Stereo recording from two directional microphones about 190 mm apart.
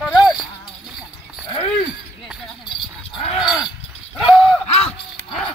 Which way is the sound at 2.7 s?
25° left (ahead or behind).